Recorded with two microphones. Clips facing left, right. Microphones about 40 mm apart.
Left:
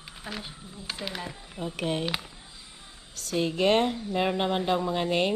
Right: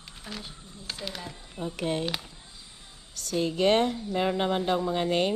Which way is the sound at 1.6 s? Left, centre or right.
Left.